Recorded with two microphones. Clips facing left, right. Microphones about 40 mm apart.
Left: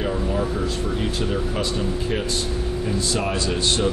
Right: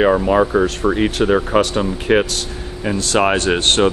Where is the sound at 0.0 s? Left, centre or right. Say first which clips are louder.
Right 10 dB; right.